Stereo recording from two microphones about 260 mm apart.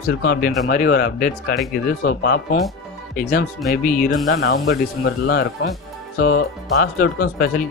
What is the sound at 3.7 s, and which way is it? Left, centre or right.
Speech, left.